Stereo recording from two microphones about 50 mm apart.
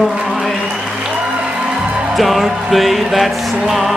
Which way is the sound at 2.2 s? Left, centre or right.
Centre.